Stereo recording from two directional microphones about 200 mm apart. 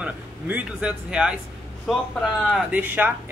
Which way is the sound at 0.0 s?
5° right (ahead or behind).